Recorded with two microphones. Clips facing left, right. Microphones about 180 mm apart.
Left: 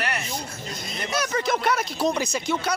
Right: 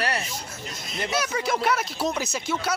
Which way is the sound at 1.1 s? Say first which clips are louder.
Left 2 dB; 5° right (ahead or behind).